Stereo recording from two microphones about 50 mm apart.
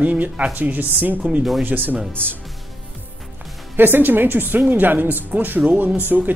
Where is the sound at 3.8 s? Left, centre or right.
Right.